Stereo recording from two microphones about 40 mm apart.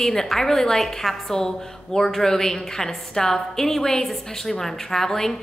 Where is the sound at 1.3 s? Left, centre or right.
Centre.